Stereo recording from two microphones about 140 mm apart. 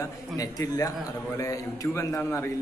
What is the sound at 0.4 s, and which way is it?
A man's voice, 25° left (ahead or behind).